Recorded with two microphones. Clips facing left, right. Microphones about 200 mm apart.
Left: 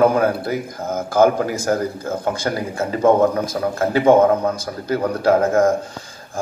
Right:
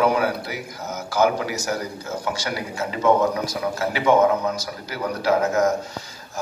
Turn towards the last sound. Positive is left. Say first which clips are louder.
# left 4 dB
turn(degrees=50)  # may be behind; listen again after turning